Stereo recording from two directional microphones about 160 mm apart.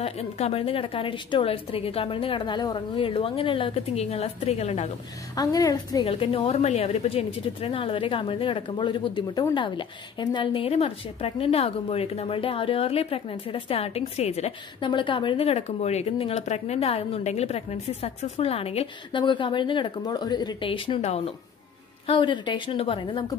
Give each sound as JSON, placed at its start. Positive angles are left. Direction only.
{"t": 0.0, "sound": "a woman's voice", "side_deg": 40}
{"t": 5.3, "sound": "a woman's voice", "side_deg": 25}
{"t": 6.0, "sound": "a woman's voice", "side_deg": 35}
{"t": 14.9, "sound": "a woman's voice", "side_deg": 30}